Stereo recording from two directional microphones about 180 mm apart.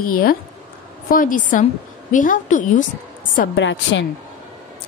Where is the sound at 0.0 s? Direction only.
55° left (ahead or behind).